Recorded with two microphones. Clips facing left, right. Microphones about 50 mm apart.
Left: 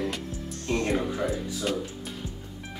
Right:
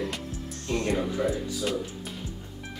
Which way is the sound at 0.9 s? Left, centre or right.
Centre.